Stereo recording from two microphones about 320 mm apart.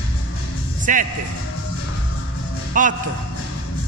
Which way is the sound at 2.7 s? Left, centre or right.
Right.